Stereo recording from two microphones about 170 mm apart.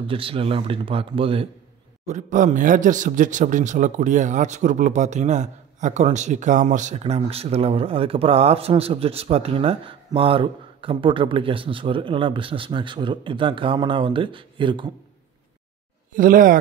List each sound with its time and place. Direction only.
0.0 s a man's voice: 30° right (ahead or behind)
2.0 s a man's voice: 45° right (ahead or behind); by 14.9 s 30° right (ahead or behind)
16.2 s speech: 55° right (ahead or behind)